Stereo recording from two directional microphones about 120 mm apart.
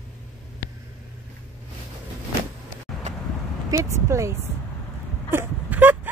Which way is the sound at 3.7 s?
25° right (ahead or behind).